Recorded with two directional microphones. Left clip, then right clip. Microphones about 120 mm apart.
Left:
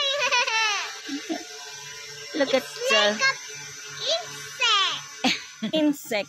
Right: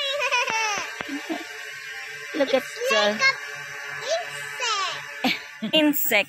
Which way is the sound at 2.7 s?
40° right (ahead or behind).